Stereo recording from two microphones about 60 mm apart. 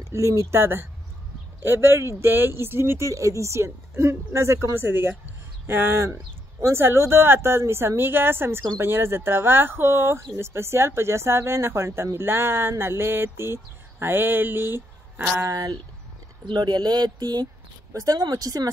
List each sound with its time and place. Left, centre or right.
0.0 s speech: right
0.6 s speech: right
4.7 s speech: right
15.4 s speech: right
17.9 s speech: right